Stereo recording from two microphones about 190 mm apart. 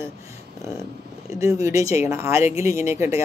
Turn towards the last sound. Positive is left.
turn(degrees=-15)  # may be behind; listen again after turning